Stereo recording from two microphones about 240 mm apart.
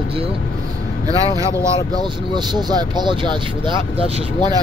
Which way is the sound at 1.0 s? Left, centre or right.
Centre.